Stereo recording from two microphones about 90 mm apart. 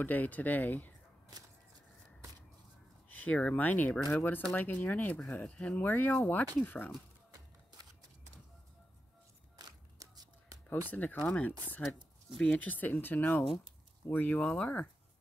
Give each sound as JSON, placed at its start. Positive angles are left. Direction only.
{"t": 0.0, "sound": "speech", "side_deg": 20}
{"t": 3.1, "sound": "speech", "side_deg": 20}
{"t": 9.6, "sound": "a sound", "side_deg": -45}
{"t": 10.7, "sound": "speech", "side_deg": 20}